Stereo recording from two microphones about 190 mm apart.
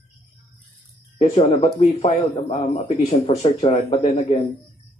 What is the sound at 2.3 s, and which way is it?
A man's voice, 25° left (ahead or behind).